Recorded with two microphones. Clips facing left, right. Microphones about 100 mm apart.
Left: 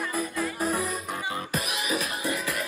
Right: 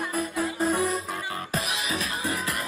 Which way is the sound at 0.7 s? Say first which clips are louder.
Right 3 dB; 25° right (ahead or behind).